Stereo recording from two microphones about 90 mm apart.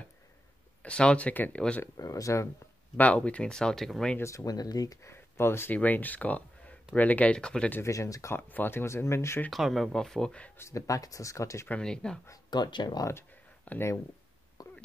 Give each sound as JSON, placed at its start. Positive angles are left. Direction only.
{"t": 0.8, "sound": "speech", "side_deg": 10}
{"t": 2.0, "sound": "speech", "side_deg": 40}
{"t": 3.0, "sound": "speech", "side_deg": 15}
{"t": 4.2, "sound": "speech", "side_deg": 35}
{"t": 5.1, "sound": "speech", "side_deg": 25}
{"t": 7.8, "sound": "speech", "side_deg": 35}
{"t": 8.4, "sound": "speech", "side_deg": 20}
{"t": 9.5, "sound": "speech", "side_deg": 0}
{"t": 10.6, "sound": "speech", "side_deg": 40}
{"t": 11.7, "sound": "speech", "side_deg": 10}
{"t": 12.4, "sound": "speech", "side_deg": 55}
{"t": 13.7, "sound": "speech", "side_deg": 25}
{"t": 14.6, "sound": "a sound", "side_deg": 45}